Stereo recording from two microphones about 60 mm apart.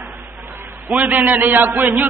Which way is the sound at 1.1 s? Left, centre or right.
Right.